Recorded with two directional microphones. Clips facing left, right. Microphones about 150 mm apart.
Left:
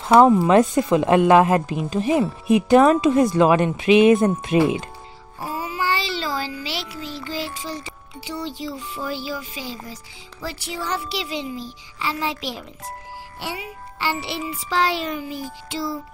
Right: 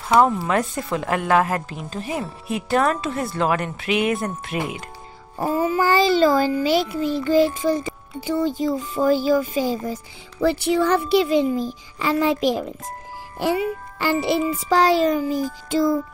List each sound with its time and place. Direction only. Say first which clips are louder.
0.1 s speech: left 5 dB; 20° left (ahead or behind)
5.4 s a child's voice: right 7 dB; 50° right (ahead or behind)